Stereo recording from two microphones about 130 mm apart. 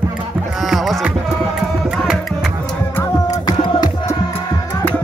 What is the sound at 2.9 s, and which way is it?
Music, 25° left (ahead or behind).